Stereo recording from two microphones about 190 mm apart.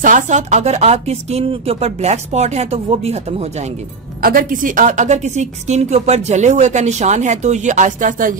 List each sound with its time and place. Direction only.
0.0 s a woman's voice: 40° right (ahead or behind)
4.2 s a woman's voice: 45° right (ahead or behind)